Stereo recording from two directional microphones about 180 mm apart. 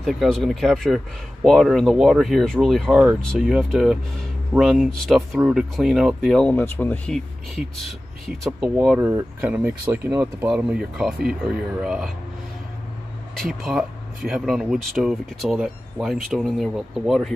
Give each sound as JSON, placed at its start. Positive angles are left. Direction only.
{"t": 0.0, "sound": "speech", "side_deg": 0}
{"t": 13.4, "sound": "speech", "side_deg": 0}